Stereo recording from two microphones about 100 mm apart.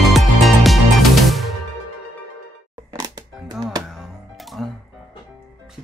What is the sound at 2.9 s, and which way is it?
Music, 40° right (ahead or behind).